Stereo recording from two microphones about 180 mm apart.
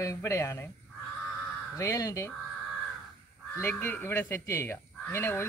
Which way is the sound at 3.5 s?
10° left (ahead or behind).